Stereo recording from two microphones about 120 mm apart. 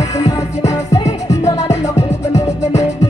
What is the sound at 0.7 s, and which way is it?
Music, 30° left (ahead or behind).